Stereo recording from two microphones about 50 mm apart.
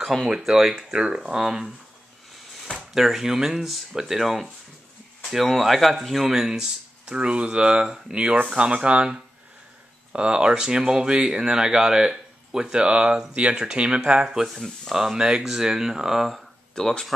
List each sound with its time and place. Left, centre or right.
0.0 s speech: centre
0.5 s speech: centre
2.9 s speech: centre
6.3 s speech: centre
7.2 s speech: right
10.1 s speech: right
14.5 s speech: centre
15.1 s speech: centre
16.7 s speech: centre